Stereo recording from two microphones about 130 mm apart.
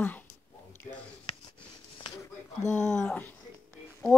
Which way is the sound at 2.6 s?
15° left (ahead or behind).